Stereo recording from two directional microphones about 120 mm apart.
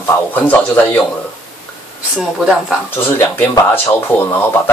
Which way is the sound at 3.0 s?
15° left (ahead or behind).